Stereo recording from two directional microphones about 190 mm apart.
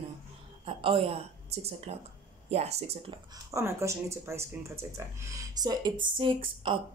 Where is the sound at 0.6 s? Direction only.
30° right (ahead or behind).